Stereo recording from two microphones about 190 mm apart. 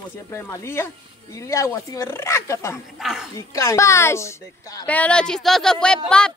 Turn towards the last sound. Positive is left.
turn(degrees=5)  # may be behind; listen again after turning